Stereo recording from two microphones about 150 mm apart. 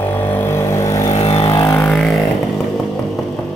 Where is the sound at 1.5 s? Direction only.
20° left (ahead or behind).